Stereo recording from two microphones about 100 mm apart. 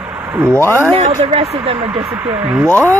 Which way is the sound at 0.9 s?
85° right.